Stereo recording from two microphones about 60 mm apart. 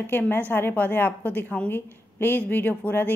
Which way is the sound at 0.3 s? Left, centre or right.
Left.